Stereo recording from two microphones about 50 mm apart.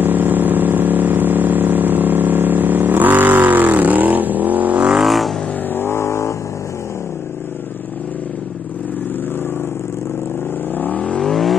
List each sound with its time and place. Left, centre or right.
0.0 s vehicle: right
5.0 s vehicle: centre
5.8 s vehicle: left
11.0 s vehicle: left
11.2 s vehicle: centre